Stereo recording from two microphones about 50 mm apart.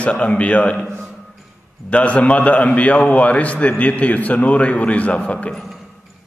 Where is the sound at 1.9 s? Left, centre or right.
Left.